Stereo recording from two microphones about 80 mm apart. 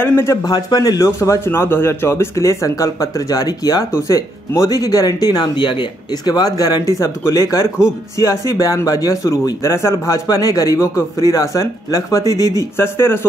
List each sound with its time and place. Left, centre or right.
0.0 s a man's voice: left
0.5 s a man's voice: left
12.5 s speech: left